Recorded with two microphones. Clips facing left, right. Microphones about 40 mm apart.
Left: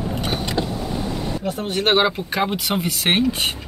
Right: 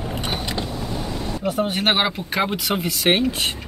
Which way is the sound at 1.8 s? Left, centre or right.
Centre.